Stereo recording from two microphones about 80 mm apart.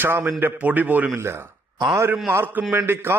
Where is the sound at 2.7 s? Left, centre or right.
Right.